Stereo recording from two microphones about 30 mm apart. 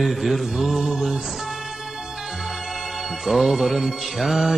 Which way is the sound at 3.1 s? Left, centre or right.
Centre.